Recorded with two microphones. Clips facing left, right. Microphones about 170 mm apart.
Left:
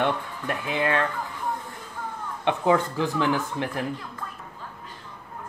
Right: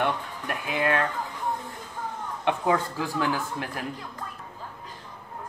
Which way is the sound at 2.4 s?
20° left (ahead or behind).